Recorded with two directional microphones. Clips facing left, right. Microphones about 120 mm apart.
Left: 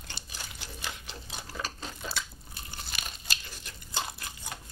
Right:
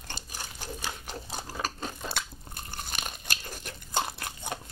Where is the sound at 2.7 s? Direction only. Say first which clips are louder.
Right 4 dB; 50° right (ahead or behind).